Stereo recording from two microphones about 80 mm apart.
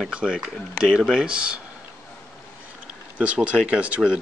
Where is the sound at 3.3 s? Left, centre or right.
Centre.